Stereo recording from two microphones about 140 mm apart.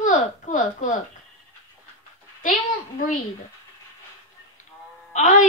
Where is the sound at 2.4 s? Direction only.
70° left (ahead or behind).